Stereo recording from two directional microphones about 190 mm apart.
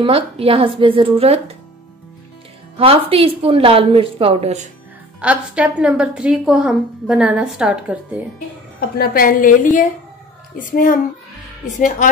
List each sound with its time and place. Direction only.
0.0 s speech: 30° right (ahead or behind)
2.8 s speech: 30° right (ahead or behind)
5.2 s a woman's voice: 5° right (ahead or behind)
8.9 s a woman's voice: 50° left (ahead or behind)